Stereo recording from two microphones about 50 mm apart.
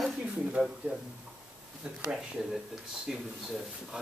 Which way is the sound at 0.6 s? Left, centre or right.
Right.